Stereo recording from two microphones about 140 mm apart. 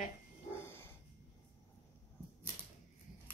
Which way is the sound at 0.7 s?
15° left (ahead or behind).